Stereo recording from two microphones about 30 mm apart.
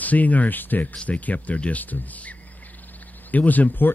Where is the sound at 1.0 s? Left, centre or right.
Left.